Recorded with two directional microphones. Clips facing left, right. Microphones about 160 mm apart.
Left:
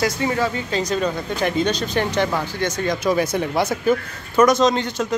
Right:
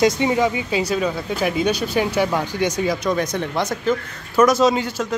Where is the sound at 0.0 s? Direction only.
20° right (ahead or behind).